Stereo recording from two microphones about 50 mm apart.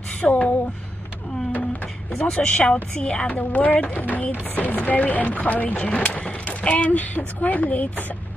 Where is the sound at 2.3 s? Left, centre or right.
Left.